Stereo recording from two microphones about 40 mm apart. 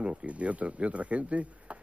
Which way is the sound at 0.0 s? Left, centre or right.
Right.